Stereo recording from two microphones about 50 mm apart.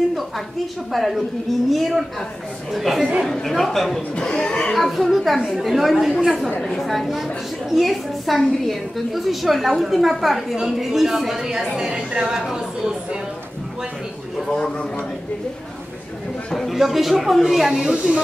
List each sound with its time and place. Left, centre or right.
0.9 s a woman's voice: centre
4.1 s speech: centre
4.7 s a woman's voice: centre
14.5 s speech: centre
16.7 s a woman's voice: centre
17.9 s speech: right